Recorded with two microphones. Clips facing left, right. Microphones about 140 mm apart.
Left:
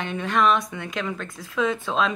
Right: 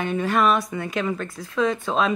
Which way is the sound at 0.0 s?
5° right (ahead or behind).